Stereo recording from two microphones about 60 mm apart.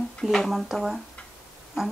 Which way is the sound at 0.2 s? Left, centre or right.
Centre.